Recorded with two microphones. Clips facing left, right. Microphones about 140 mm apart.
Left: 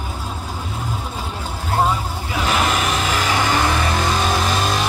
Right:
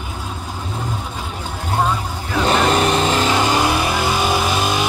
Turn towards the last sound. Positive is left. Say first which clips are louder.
# right 1 dB
turn(degrees=-5)  # may be behind; listen again after turning